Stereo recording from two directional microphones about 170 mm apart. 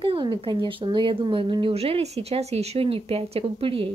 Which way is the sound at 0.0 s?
30° right (ahead or behind).